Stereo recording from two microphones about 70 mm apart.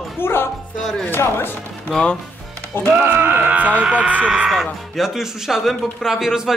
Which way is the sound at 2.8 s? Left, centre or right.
Right.